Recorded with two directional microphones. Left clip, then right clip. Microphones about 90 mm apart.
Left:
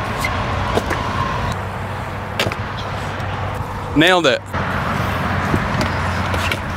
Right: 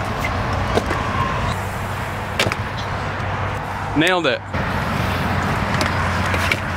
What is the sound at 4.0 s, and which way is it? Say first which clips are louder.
Speech: left 4 dB; 30° left (ahead or behind).